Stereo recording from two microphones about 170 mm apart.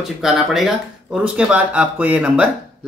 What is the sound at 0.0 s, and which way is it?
Speech, centre (ahead or behind).